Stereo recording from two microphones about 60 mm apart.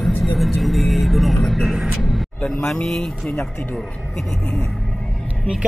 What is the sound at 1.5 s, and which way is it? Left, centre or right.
Vehicle, centre.